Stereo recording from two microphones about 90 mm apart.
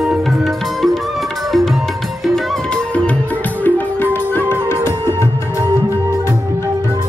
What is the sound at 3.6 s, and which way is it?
Music, 20° left (ahead or behind).